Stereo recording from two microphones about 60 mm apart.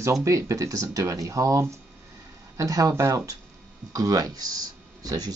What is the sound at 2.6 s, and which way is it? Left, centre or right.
Speech, right.